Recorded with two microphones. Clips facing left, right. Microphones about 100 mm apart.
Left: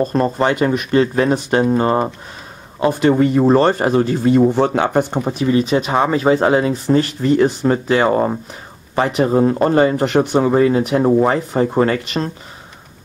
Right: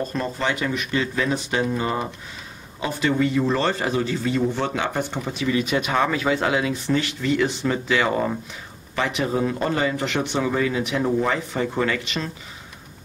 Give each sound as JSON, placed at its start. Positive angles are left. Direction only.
{"t": 0.0, "sound": "speech", "side_deg": 40}